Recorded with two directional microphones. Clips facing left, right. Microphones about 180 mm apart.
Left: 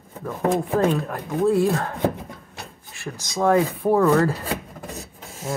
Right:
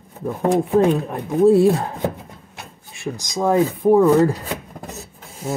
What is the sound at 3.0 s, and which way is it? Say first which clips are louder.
Speech: right 1 dB; 15° right (ahead or behind).